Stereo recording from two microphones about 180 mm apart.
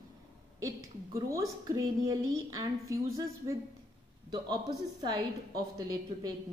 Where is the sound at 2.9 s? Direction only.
15° right (ahead or behind).